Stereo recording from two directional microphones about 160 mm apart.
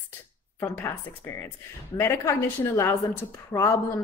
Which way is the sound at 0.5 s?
15° left (ahead or behind).